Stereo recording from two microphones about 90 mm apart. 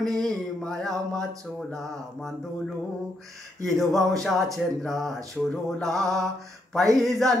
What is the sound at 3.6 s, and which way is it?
Mantra, centre (ahead or behind).